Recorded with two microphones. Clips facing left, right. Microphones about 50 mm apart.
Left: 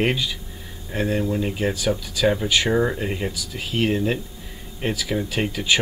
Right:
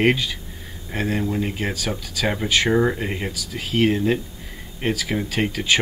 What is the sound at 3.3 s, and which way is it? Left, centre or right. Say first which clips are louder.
Speech: even; right.